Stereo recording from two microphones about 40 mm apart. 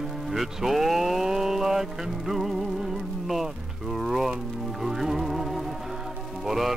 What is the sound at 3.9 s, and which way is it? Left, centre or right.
Speech, centre.